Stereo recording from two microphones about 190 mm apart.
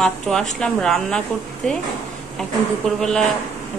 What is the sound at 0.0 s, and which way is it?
A woman's voice, 5° left (ahead or behind).